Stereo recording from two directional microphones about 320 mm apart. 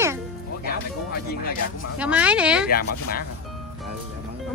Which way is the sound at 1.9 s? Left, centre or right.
Centre.